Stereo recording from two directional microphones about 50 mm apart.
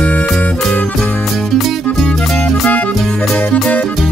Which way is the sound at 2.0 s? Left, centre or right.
Centre.